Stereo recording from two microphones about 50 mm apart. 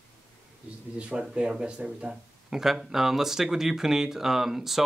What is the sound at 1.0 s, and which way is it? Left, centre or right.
Speech, right.